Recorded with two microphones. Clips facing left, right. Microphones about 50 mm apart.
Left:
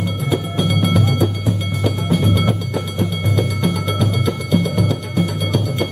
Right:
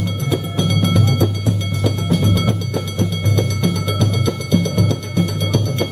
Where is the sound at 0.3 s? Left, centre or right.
Centre.